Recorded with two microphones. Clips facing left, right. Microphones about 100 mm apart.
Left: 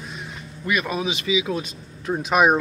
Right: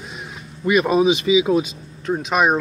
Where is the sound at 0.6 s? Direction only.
25° right (ahead or behind).